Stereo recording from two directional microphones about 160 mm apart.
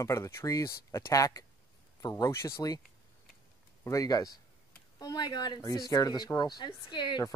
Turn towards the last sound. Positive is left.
turn(degrees=30)  # may be behind; listen again after turning